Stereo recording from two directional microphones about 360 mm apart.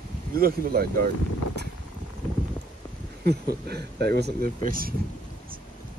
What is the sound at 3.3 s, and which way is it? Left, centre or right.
Speech, right.